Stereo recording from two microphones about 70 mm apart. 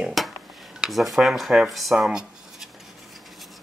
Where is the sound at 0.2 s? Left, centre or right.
Centre.